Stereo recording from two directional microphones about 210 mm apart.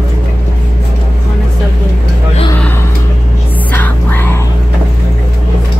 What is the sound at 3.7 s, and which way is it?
Music, 10° left (ahead or behind).